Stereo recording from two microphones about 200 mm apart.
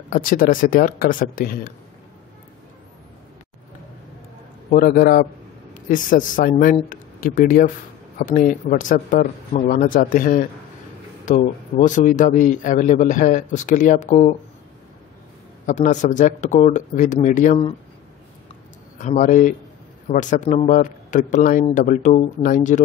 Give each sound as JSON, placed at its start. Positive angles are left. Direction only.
{"t": 0.1, "sound": "speech", "side_deg": 45}
{"t": 4.6, "sound": "a man's voice", "side_deg": 45}
{"t": 15.6, "sound": "a man's voice", "side_deg": 40}
{"t": 18.9, "sound": "a man's voice", "side_deg": 40}